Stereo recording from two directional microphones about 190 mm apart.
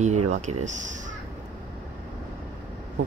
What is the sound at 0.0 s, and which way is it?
Speech, 35° right (ahead or behind).